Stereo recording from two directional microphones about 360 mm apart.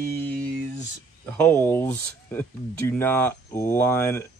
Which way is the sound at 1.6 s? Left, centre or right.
Centre.